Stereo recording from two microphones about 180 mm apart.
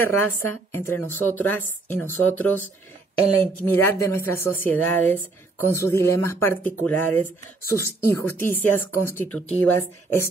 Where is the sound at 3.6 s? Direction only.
10° left (ahead or behind).